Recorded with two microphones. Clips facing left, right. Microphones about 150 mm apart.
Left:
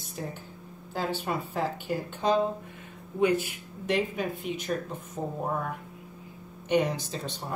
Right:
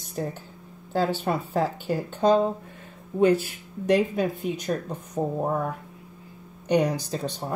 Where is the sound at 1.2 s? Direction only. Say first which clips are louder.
Right 5 dB; 45° right (ahead or behind).